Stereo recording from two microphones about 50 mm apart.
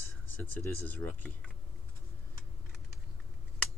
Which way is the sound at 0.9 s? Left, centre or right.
Left.